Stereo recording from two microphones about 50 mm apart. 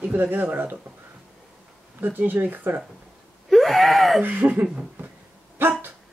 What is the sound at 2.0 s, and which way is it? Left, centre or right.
Speech, right.